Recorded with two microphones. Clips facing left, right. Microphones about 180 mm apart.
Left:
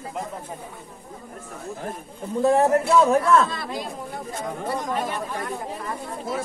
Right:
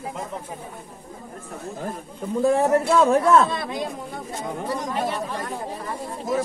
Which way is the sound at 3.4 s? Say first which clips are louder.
Right 3 dB; 20° right (ahead or behind).